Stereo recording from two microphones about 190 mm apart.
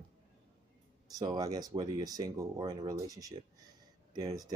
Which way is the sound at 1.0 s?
20° right (ahead or behind).